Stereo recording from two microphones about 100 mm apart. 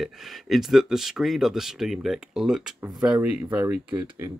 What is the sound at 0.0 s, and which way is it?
Speech, centre (ahead or behind).